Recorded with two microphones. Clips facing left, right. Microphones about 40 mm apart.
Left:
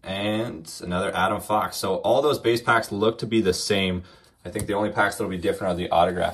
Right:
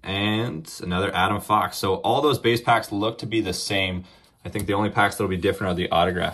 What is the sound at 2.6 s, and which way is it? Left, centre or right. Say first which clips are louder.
Speech: even; centre.